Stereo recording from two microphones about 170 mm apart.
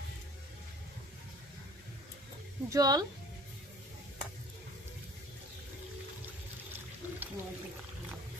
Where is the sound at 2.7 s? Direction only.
20° right (ahead or behind).